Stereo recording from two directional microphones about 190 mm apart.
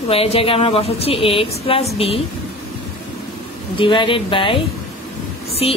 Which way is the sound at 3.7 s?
25° left (ahead or behind).